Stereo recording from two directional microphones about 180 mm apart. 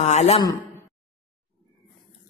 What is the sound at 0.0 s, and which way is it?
Speech, 40° left (ahead or behind).